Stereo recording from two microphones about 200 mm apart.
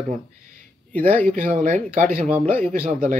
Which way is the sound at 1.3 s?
40° right (ahead or behind).